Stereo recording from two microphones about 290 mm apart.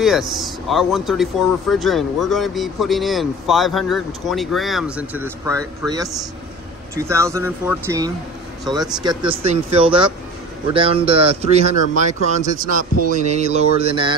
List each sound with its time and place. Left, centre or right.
0.0 s speech: centre
9.3 s speech: right